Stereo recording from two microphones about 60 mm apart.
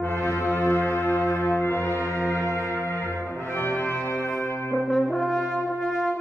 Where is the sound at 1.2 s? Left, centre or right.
Left.